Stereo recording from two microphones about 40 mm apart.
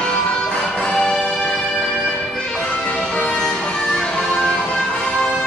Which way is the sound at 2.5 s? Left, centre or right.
Left.